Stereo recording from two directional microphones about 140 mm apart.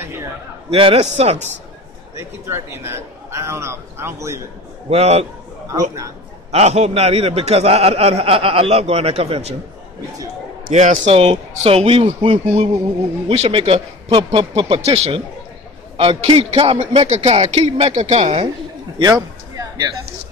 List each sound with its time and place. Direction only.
0.0 s a sound: 15° right (ahead or behind)
0.7 s a man's voice: 45° right (ahead or behind)
2.1 s a man's voice: 20° right (ahead or behind)
4.8 s a man's voice: 50° right (ahead or behind)
5.7 s a man's voice: 20° right (ahead or behind)
6.5 s a man's voice: 50° right (ahead or behind)
10.7 s a man's voice: 55° right (ahead or behind)
18.9 s a sound: 30° right (ahead or behind)